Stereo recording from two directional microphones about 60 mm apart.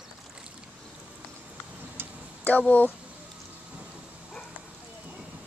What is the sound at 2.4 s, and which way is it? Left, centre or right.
Speech, left.